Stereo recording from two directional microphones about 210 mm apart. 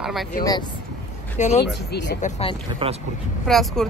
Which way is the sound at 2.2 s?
30° left (ahead or behind).